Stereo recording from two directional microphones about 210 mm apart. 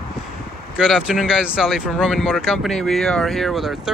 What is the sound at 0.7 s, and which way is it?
Speech, 5° right (ahead or behind).